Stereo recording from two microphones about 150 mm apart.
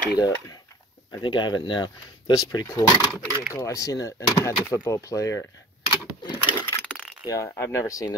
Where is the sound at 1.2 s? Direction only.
30° left (ahead or behind).